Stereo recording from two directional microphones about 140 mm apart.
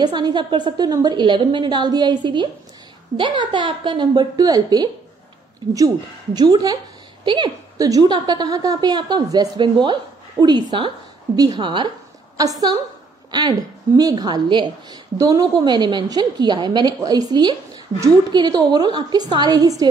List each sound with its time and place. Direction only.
0.0 s a woman's voice: 30° right (ahead or behind)
6.3 s a woman's voice: 30° right (ahead or behind)